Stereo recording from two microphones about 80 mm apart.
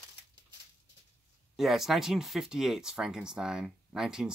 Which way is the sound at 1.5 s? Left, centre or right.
Centre.